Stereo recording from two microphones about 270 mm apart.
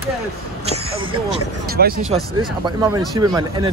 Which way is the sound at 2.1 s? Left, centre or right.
Centre.